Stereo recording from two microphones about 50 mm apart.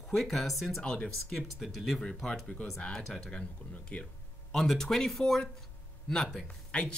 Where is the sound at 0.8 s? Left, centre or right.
Centre.